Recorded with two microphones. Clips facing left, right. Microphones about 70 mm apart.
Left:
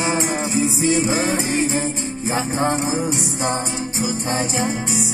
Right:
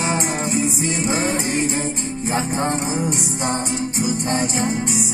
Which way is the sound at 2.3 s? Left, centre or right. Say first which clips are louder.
Left 1 dB; centre.